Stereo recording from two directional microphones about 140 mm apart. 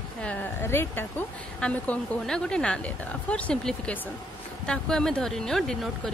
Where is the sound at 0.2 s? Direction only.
10° left (ahead or behind).